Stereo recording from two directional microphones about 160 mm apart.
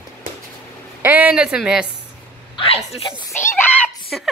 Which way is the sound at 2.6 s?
35° left (ahead or behind).